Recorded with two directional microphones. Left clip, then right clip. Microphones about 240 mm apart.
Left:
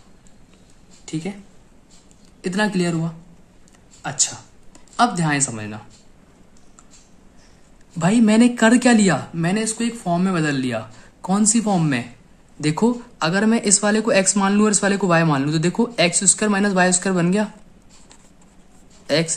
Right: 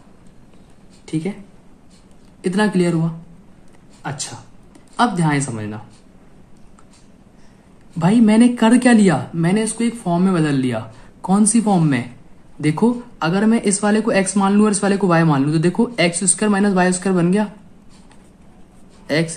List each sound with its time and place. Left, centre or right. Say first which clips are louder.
1.0 s a sound: right 4 dB; centre
2.4 s speech: right 3 dB; centre
8.0 s speech: right 2 dB; centre
19.0 s speech: even; centre